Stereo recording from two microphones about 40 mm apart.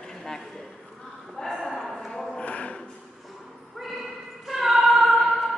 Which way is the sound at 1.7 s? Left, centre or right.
Centre.